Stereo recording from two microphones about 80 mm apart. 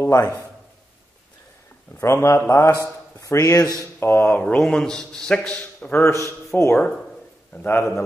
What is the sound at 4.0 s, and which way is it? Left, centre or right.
Speech, left.